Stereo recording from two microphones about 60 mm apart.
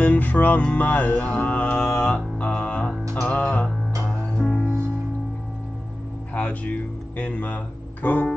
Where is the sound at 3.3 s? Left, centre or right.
Left.